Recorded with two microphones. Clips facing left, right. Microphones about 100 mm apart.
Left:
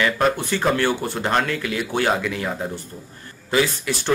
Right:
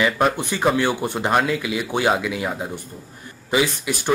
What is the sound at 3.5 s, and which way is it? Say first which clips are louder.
Speech: even; 15° right (ahead or behind).